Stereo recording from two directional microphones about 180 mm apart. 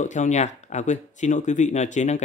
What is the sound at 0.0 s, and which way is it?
Speech, 40° left (ahead or behind).